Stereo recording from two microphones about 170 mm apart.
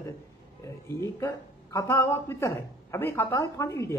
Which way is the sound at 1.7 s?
20° left (ahead or behind).